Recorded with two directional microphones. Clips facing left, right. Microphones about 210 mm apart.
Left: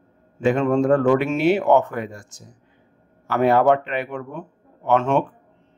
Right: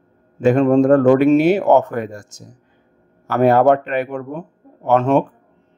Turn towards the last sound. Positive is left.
turn(degrees=-40)  # may be behind; listen again after turning